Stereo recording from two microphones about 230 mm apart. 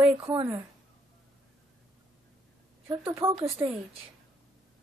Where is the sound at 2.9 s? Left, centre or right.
Centre.